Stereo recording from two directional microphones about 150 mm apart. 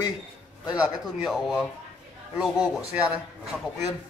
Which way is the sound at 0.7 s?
5° right (ahead or behind).